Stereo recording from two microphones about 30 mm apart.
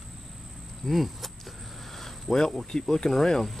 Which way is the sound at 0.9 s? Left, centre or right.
Centre.